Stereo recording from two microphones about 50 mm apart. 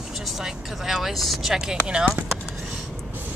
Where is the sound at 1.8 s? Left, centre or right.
Centre.